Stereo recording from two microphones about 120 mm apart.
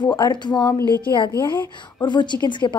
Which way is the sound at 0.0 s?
40° left (ahead or behind).